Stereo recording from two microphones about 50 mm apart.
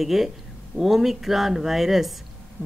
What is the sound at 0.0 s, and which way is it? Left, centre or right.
Speech, centre.